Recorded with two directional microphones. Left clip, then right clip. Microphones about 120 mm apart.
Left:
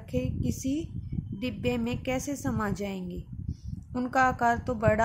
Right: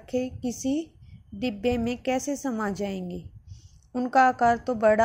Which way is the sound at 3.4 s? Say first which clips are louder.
Left 12 dB; 15° right (ahead or behind).